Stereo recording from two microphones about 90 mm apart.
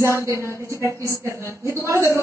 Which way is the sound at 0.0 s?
35° right (ahead or behind).